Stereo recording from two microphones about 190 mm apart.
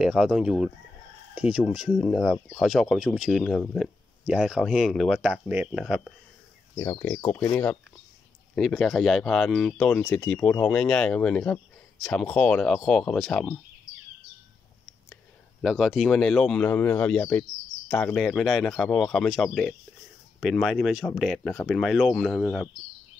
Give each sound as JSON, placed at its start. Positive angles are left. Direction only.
{"t": 0.0, "sound": "speech", "side_deg": -5}
{"t": 6.7, "sound": "speech", "side_deg": 15}
{"t": 8.5, "sound": "speech", "side_deg": 0}
{"t": 15.6, "sound": "speech", "side_deg": 0}